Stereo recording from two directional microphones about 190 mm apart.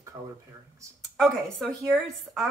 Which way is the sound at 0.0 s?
15° right (ahead or behind).